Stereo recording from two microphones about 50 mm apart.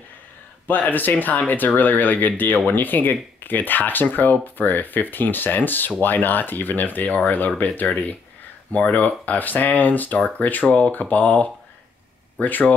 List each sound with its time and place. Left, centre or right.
0.7 s speech: left